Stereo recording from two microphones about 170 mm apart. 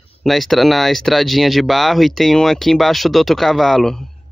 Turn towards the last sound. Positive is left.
turn(degrees=0)  # may be behind; listen again after turning